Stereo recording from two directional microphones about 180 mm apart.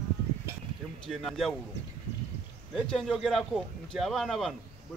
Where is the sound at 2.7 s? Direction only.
Centre (ahead or behind).